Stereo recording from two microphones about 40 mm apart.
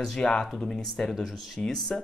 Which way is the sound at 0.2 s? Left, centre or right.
Left.